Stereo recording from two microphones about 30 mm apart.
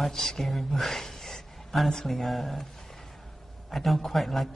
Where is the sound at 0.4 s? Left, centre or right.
Centre.